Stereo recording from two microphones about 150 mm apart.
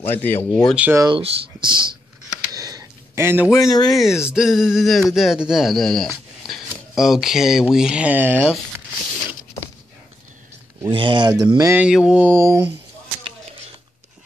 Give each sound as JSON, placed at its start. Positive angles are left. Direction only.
{"t": 0.0, "sound": "speech", "side_deg": 15}
{"t": 0.7, "sound": "mantra", "side_deg": -10}
{"t": 1.0, "sound": "speech", "side_deg": -30}
{"t": 2.5, "sound": "a sound", "side_deg": -25}
{"t": 3.5, "sound": "speech", "side_deg": 25}
{"t": 4.0, "sound": "speech", "side_deg": -5}
{"t": 7.7, "sound": "mantra", "side_deg": -5}
{"t": 10.8, "sound": "speech", "side_deg": -35}
{"t": 11.7, "sound": "mantra", "side_deg": -5}